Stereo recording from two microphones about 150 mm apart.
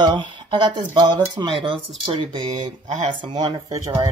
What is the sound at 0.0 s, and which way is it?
Speech, 30° right (ahead or behind).